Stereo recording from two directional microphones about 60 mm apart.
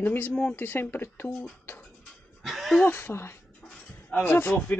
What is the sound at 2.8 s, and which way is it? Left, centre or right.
Speech, left.